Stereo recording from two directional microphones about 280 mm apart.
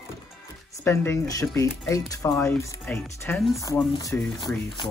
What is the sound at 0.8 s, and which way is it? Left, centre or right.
Speech, centre.